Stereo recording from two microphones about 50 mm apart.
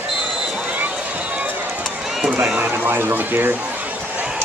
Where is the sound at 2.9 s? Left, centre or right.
Right.